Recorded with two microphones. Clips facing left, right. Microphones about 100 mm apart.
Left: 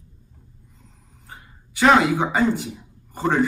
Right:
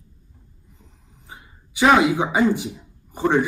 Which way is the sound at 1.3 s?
15° right (ahead or behind).